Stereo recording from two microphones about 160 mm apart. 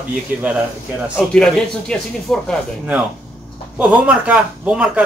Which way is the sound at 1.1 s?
5° left (ahead or behind).